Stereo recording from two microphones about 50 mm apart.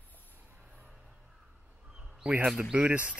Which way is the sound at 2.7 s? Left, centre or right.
Right.